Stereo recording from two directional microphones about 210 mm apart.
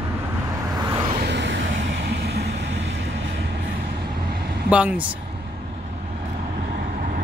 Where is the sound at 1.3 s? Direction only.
55° right (ahead or behind).